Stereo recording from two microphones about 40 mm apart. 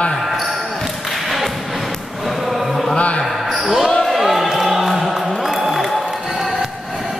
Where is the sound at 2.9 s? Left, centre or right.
Left.